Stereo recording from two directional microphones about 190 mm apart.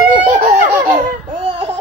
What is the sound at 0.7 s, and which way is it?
Laughter, 10° right (ahead or behind).